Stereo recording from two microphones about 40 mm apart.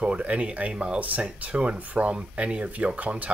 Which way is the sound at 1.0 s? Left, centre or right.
Right.